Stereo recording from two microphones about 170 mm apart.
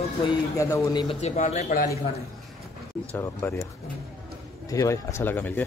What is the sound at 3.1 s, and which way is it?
Speech, 15° left (ahead or behind).